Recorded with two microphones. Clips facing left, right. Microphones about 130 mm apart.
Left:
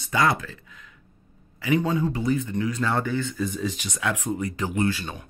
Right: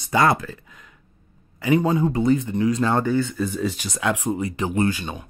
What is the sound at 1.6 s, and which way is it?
Speech, 35° right (ahead or behind).